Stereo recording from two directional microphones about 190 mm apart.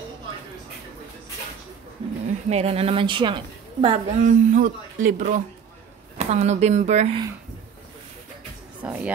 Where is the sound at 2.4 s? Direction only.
35° right (ahead or behind).